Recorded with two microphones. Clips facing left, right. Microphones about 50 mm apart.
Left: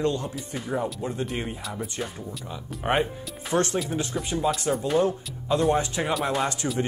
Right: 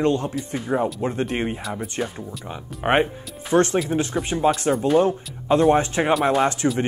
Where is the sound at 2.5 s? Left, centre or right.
Right.